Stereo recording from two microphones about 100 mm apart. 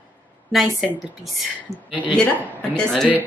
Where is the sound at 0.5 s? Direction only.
Centre (ahead or behind).